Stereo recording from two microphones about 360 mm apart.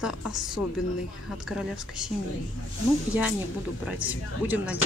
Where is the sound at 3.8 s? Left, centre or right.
Centre.